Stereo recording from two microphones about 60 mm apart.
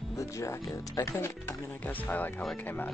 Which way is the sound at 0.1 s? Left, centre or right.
Left.